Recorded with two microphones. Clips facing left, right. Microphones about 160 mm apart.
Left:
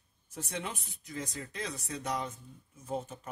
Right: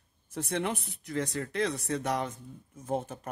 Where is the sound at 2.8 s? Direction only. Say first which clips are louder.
Right 4 dB; 50° right (ahead or behind).